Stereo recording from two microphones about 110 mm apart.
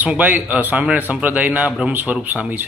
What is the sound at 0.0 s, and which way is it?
Speech, 15° right (ahead or behind).